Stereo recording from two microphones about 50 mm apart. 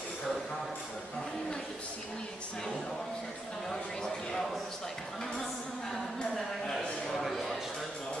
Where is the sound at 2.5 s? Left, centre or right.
Centre.